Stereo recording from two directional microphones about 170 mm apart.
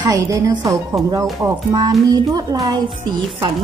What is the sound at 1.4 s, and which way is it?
A woman's voice, 25° right (ahead or behind).